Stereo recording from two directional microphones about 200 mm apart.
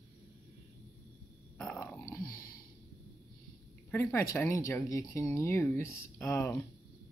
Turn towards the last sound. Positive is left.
turn(degrees=15)  # may be behind; listen again after turning